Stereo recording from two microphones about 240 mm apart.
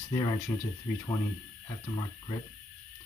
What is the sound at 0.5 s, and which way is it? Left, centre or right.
Speech, centre.